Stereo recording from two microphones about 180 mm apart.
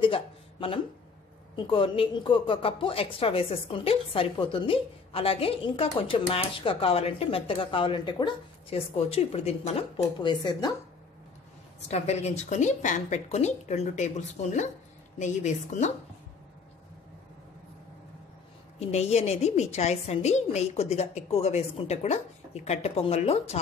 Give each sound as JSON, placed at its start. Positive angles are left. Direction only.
{"t": 0.0, "sound": "a woman's voice", "side_deg": 30}
{"t": 11.9, "sound": "a woman's voice", "side_deg": 35}
{"t": 18.8, "sound": "a woman's voice", "side_deg": 35}